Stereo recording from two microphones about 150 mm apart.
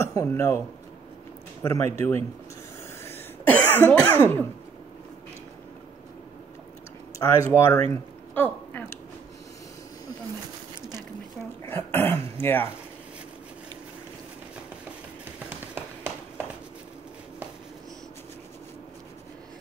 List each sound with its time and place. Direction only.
0.0 s speech: 20° left (ahead or behind)
1.6 s speech: 20° left (ahead or behind)
3.1 s cough: 10° left (ahead or behind)
7.2 s speech: 15° left (ahead or behind)
7.9 s a sound: 15° left (ahead or behind)
11.6 s throat clearing: 15° left (ahead or behind)
15.5 s tap: 15° right (ahead or behind)